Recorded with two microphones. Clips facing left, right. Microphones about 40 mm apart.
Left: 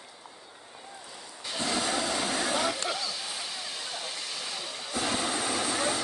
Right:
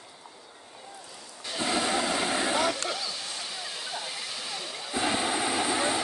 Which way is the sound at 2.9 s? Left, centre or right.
Centre.